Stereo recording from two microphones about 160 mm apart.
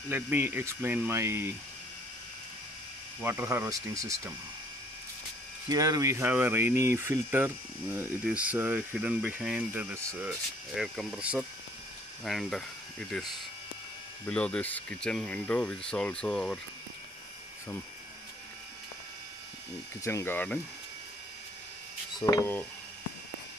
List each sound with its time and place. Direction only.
0.1 s speech: 10° right (ahead or behind)
3.2 s speech: 10° right (ahead or behind)
5.7 s speech: 20° right (ahead or behind); by 16.5 s 5° left (ahead or behind)
20.0 s speech: 20° left (ahead or behind)
22.2 s speech: 20° left (ahead or behind)